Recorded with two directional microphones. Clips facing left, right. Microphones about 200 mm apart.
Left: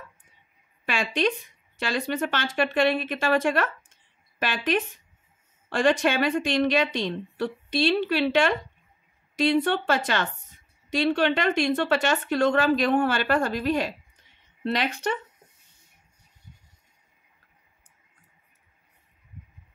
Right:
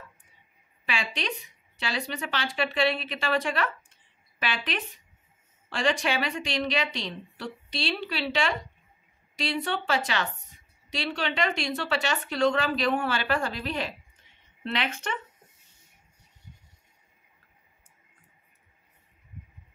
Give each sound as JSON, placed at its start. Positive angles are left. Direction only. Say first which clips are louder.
{"t": 0.8, "sound": "a woman's voice", "louder": "left 7 dB", "side_deg": 50}